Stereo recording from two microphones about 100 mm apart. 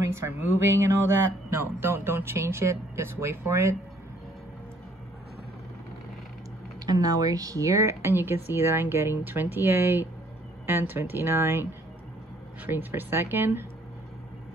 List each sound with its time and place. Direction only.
0.1 s speech: 25° right (ahead or behind)
6.9 s speech: 35° right (ahead or behind)